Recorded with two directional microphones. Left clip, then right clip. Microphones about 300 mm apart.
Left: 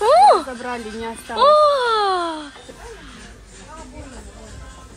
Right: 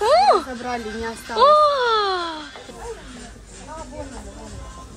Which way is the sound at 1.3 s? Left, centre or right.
Centre.